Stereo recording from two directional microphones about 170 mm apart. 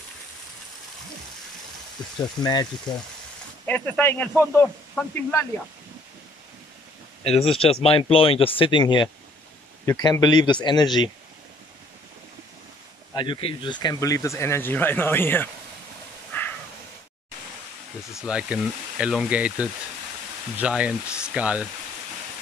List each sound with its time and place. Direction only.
2.4 s speech: 25° left (ahead or behind)
3.6 s speech: 10° left (ahead or behind)
7.2 s speech: 35° left (ahead or behind)
13.1 s speech: 25° left (ahead or behind)
16.3 s a sound: 10° left (ahead or behind)
18.1 s speech: 5° right (ahead or behind)